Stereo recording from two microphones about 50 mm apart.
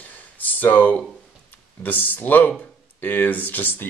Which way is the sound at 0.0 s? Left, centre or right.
Left.